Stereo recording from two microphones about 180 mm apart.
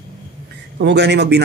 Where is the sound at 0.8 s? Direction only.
70° right (ahead or behind).